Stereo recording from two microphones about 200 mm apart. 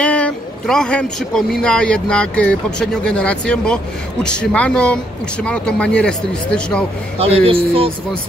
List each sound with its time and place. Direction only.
0.0 s speech: 5° left (ahead or behind)
7.2 s speech: 30° right (ahead or behind)